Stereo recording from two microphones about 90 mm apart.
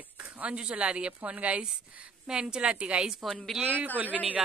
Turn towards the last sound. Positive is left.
turn(degrees=-15)  # may be behind; listen again after turning